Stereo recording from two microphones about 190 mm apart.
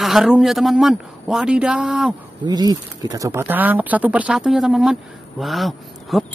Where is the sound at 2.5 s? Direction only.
20° right (ahead or behind).